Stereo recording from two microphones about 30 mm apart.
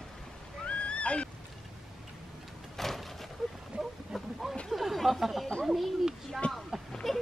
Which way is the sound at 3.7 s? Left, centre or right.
Right.